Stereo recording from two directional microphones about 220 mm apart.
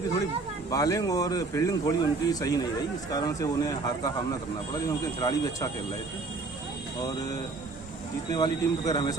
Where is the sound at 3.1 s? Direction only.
15° left (ahead or behind).